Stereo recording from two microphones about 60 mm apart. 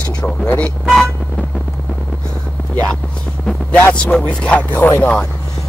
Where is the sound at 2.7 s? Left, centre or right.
Left.